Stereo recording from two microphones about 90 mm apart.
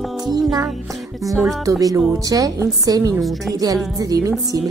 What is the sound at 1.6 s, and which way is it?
Speech, 40° right (ahead or behind).